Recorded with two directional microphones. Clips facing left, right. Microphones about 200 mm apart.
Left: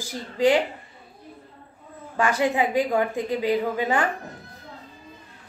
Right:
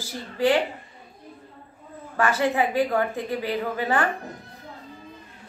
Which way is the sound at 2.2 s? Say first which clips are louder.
Even; 15° left (ahead or behind).